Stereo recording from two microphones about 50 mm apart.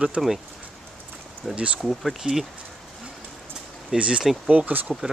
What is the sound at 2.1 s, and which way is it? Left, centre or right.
Speech, centre.